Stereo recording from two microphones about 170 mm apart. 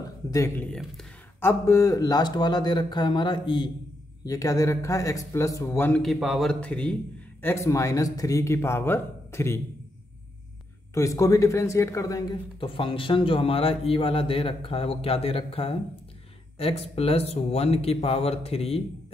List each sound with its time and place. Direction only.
0.3 s a man's voice: 20° left (ahead or behind)
7.4 s a man's voice: 15° left (ahead or behind)
11.0 s a man's voice: 20° left (ahead or behind); by 18.8 s 35° left (ahead or behind)